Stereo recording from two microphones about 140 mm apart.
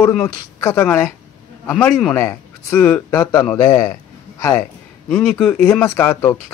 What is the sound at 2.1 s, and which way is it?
A man's voice, 15° left (ahead or behind).